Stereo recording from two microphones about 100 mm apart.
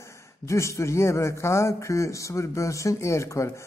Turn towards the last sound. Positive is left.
turn(degrees=30)  # may be behind; listen again after turning